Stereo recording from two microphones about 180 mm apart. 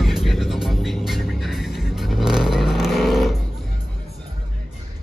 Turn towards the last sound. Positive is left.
turn(degrees=0)  # may be behind; listen again after turning